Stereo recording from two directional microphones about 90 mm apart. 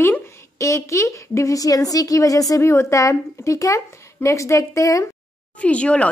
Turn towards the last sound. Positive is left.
turn(degrees=15)  # may be behind; listen again after turning